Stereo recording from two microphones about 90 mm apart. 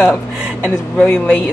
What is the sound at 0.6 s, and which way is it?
Speech, 15° left (ahead or behind).